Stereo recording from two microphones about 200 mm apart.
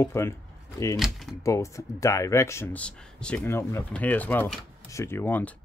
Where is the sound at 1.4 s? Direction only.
15° left (ahead or behind).